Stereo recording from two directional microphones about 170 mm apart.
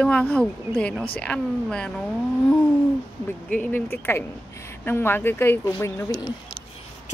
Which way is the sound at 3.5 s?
10° left (ahead or behind).